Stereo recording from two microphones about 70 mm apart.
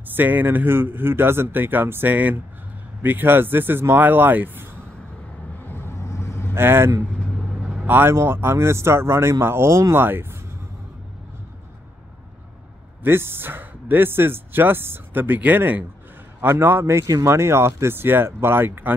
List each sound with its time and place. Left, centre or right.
0.1 s speech: right
5.7 s vehicle: left
6.5 s speech: right
13.0 s speech: right